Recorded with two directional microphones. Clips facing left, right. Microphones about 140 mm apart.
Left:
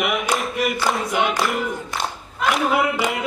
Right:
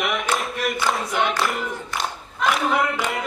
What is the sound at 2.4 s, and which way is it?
Clapping, 5° left (ahead or behind).